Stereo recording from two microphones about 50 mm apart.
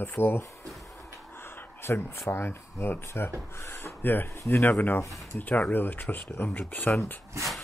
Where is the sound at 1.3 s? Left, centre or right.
Left.